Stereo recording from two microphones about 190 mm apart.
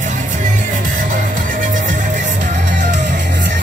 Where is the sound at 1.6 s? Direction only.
45° right (ahead or behind).